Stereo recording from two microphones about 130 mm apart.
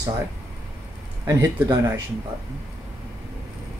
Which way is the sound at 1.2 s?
25° right (ahead or behind).